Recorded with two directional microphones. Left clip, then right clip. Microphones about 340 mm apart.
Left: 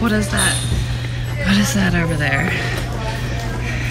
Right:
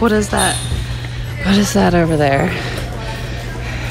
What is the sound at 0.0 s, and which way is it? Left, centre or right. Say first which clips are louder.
Speech: right 4 dB; centre.